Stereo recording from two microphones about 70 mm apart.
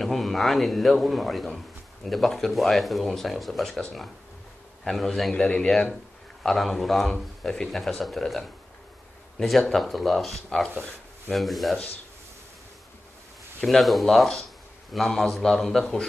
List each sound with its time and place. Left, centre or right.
0.0 s speech: centre
4.8 s speech: centre
5.3 s speech: centre
13.7 s speech: centre